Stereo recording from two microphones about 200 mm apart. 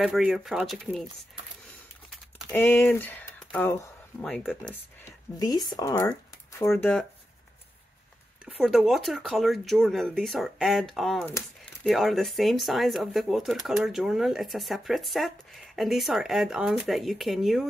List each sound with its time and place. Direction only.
0.0 s speech: centre (ahead or behind)
2.0 s typing: 10° left (ahead or behind)
4.2 s speech: centre (ahead or behind)
5.4 s speech: 20° left (ahead or behind)
8.5 s speech: 5° right (ahead or behind)